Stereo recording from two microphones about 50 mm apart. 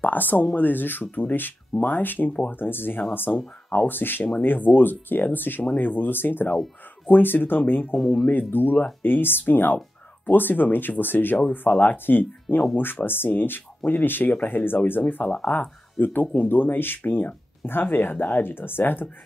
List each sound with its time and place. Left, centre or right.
0.0 s speech: left
8.0 s speech: centre
8.3 s speech: left
15.2 s speech: left
15.5 s speech: left